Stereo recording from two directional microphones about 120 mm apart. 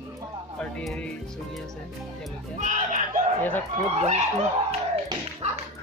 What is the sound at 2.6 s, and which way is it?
Speech, 90° right.